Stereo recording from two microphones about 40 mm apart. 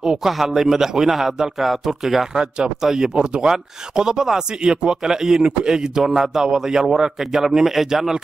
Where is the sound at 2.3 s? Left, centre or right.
Centre.